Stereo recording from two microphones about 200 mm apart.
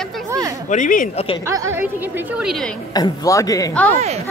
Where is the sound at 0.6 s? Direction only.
40° left (ahead or behind).